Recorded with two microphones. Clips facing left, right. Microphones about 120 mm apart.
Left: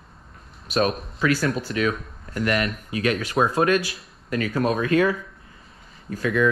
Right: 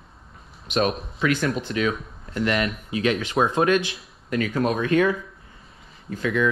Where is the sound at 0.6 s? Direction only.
35° left (ahead or behind).